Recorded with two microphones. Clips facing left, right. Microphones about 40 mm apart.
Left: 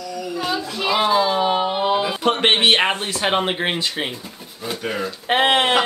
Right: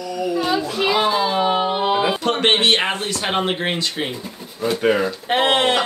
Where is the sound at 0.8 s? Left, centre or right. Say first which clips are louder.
Left 2 dB; centre.